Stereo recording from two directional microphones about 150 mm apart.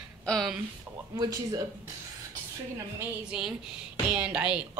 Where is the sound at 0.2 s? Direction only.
5° left (ahead or behind).